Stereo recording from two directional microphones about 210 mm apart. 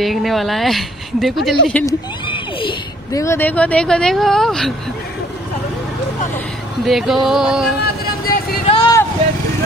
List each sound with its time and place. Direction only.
0.0 s speech: centre (ahead or behind)
2.2 s speech: 25° left (ahead or behind); by 4.7 s centre (ahead or behind)
6.8 s speech: centre (ahead or behind)
7.8 s vehicle: 50° left (ahead or behind)
8.6 s a sound: 25° left (ahead or behind)